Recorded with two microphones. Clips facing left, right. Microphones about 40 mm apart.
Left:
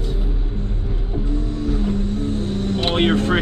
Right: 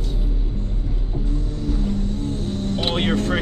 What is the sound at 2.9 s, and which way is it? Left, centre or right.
Speech, centre.